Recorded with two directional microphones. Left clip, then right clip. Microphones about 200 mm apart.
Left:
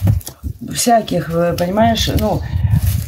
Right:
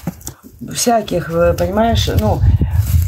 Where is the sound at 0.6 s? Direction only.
15° right (ahead or behind).